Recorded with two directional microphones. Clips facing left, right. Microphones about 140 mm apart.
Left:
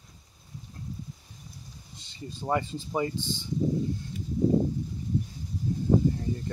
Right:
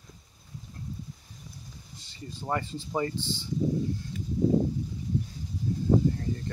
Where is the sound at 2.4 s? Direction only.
15° left (ahead or behind).